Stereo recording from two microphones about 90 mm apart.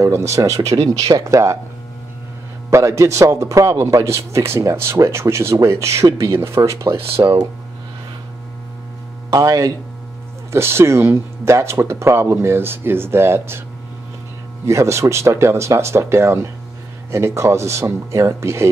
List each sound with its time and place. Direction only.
0.0 s speech: 35° right (ahead or behind)
2.7 s speech: 35° right (ahead or behind)
7.2 s speech: 50° right (ahead or behind)
9.3 s speech: 40° right (ahead or behind)
10.5 s speech: 30° right (ahead or behind)
14.7 s speech: 35° right (ahead or behind)